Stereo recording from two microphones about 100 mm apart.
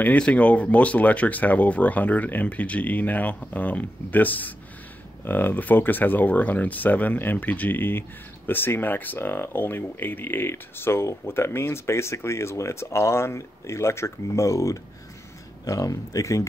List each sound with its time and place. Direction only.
0.0 s speech: 15° left (ahead or behind); by 16.4 s 35° left (ahead or behind)